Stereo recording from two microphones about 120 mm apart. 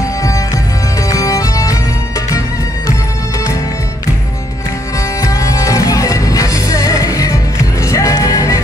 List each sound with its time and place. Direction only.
0.0 s music: 25° left (ahead or behind)
5.2 s music: 30° left (ahead or behind)